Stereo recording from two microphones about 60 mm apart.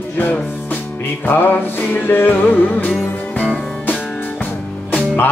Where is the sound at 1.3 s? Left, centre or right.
Left.